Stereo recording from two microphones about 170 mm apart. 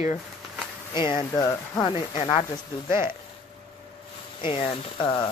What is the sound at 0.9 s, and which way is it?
Speech, 25° left (ahead or behind).